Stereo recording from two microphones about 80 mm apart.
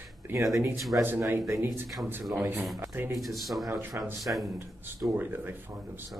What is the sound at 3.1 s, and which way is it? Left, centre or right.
Speech, centre.